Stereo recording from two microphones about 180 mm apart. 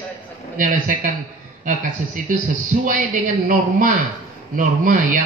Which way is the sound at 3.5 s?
45° right (ahead or behind).